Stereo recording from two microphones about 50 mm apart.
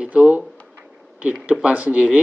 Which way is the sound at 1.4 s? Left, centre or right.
Right.